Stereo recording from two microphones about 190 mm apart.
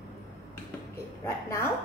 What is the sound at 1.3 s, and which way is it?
Speech, 15° left (ahead or behind).